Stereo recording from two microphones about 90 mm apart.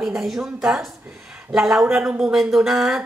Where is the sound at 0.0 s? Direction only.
5° right (ahead or behind).